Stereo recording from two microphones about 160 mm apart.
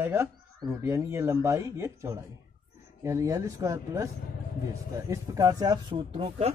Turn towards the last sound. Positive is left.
turn(degrees=-40)  # may be behind; listen again after turning